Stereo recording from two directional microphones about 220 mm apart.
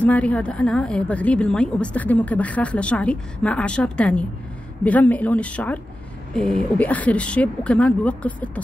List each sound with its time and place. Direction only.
0.0 s speech: 5° left (ahead or behind)